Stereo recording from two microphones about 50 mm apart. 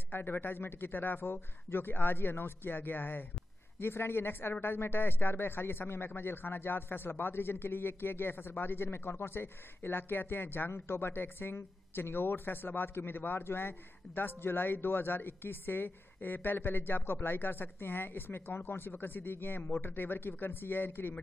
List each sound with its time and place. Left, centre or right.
0.1 s speech: left
3.8 s speech: left